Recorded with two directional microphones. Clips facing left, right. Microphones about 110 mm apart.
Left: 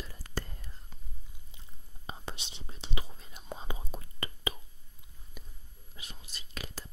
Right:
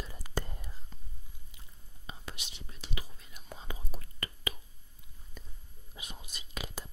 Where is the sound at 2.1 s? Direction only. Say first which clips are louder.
Left 4 dB; 25° left (ahead or behind).